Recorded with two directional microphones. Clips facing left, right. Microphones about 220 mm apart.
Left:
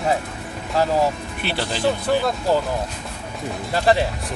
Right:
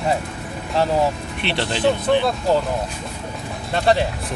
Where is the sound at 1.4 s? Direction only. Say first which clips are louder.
Right 2 dB; 5° left (ahead or behind).